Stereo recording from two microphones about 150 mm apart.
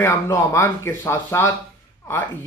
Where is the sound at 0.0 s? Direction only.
20° left (ahead or behind).